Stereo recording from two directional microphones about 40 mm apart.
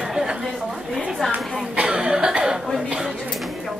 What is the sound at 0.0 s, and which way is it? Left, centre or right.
Chatter, centre.